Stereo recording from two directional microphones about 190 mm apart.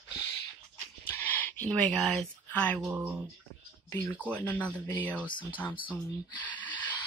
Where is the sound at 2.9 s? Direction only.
10° right (ahead or behind).